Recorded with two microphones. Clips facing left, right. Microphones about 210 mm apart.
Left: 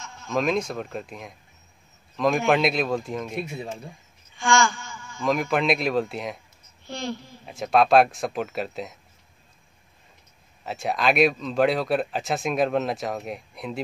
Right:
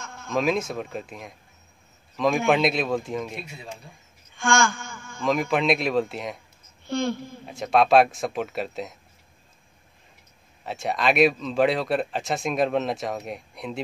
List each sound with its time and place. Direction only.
0.3 s speech: centre (ahead or behind)
4.4 s a man's voice: 50° right (ahead or behind)
5.2 s speech: centre (ahead or behind)
6.9 s a woman's voice: 55° right (ahead or behind)
7.4 s speech: centre (ahead or behind)
10.6 s speech: centre (ahead or behind)